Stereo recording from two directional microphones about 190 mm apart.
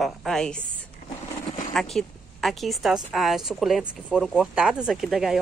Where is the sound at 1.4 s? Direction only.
45° left (ahead or behind).